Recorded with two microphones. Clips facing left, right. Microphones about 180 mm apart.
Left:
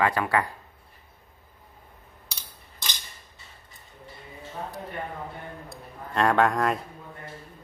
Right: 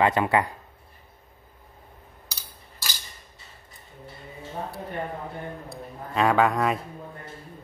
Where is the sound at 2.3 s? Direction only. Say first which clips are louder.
Even; 5° right (ahead or behind).